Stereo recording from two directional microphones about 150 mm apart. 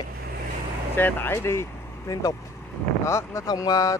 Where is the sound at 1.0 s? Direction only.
15° left (ahead or behind).